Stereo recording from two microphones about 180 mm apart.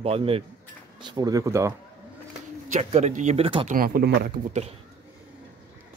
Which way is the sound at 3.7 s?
55° right (ahead or behind).